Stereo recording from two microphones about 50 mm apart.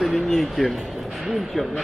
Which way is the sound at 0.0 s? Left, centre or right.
Centre.